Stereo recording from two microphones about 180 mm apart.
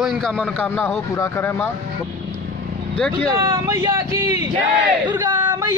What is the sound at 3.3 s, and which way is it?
Speech, 15° right (ahead or behind).